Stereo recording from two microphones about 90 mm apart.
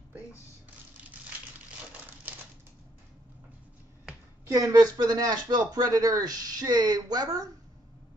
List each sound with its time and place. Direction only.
4.5 s speech: 40° right (ahead or behind)